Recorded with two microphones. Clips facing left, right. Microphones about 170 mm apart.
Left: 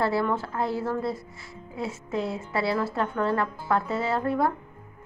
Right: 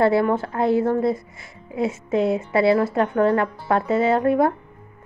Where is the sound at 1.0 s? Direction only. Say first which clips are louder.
Right 8 dB; 20° right (ahead or behind).